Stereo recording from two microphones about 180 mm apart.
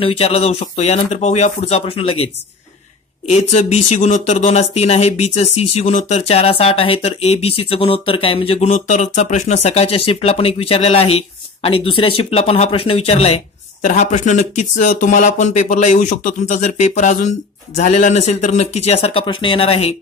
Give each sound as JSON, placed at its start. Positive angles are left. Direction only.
{"t": 0.0, "sound": "speech", "side_deg": 35}